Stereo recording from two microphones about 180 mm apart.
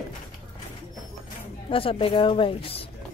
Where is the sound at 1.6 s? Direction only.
30° left (ahead or behind).